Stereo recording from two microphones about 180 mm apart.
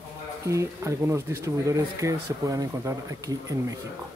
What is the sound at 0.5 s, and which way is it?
Speech, 15° right (ahead or behind).